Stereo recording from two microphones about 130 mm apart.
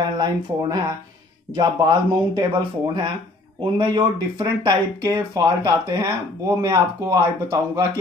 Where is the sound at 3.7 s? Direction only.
40° right (ahead or behind).